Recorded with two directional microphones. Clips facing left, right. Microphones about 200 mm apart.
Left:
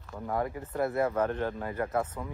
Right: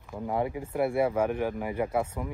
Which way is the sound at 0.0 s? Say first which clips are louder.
Right 2 dB; 15° right (ahead or behind).